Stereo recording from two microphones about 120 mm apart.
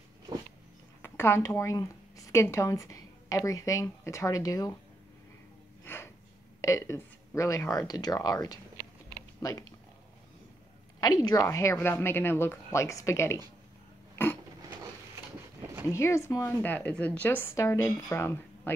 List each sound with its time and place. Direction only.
1.0 s speech: 20° left (ahead or behind)
5.9 s snort: 20° left (ahead or behind)
6.6 s a woman's voice: 25° left (ahead or behind)
11.0 s speech: 35° left (ahead or behind)
11.4 s a woman's voice: 20° left (ahead or behind)
14.1 s a sound: 15° left (ahead or behind)
15.6 s a sound: 20° right (ahead or behind)
15.9 s a woman's voice: 25° left (ahead or behind)